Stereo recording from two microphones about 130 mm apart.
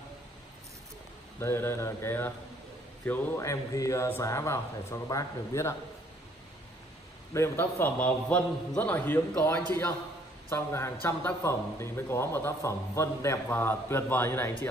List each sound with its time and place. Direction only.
1.4 s speech: 20° left (ahead or behind)
7.3 s speech: 20° left (ahead or behind)